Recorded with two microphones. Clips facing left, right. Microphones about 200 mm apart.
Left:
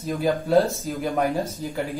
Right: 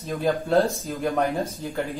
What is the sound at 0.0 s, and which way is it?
Speech, centre (ahead or behind).